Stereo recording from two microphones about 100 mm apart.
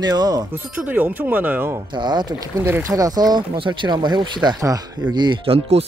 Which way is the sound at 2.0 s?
50° right (ahead or behind).